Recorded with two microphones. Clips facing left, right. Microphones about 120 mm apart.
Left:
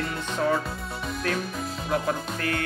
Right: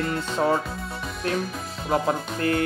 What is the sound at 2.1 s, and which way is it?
Speech, 25° right (ahead or behind).